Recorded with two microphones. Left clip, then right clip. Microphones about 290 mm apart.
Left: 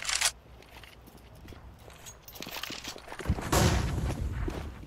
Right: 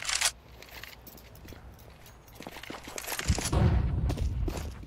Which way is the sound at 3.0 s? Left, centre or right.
Right.